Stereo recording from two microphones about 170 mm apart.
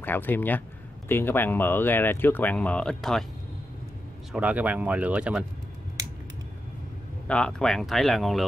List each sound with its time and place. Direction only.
0.0 s speech: 10° left (ahead or behind)
4.3 s speech: 10° right (ahead or behind)
7.2 s speech: 5° left (ahead or behind)